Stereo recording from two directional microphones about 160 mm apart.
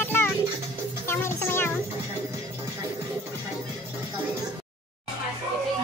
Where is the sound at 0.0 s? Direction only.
15° left (ahead or behind).